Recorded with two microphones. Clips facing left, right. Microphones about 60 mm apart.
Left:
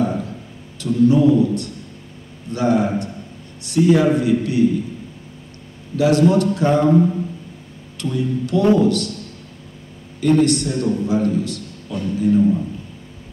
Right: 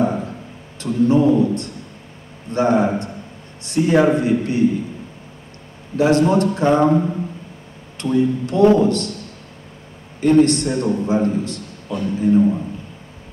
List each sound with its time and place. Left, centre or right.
0.7 s a man's voice: right
5.9 s a man's voice: right
8.0 s a man's voice: right
10.2 s a man's voice: right